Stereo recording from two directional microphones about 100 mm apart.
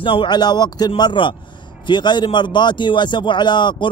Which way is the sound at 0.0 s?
55° left (ahead or behind).